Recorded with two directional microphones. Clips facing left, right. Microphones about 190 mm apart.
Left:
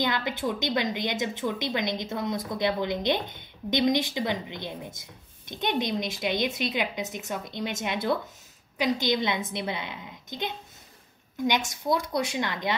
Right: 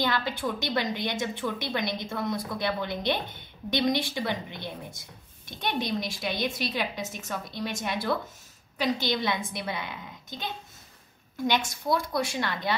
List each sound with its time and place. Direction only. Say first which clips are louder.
0.0 s a woman's voice: left 1 dB; 20° left (ahead or behind)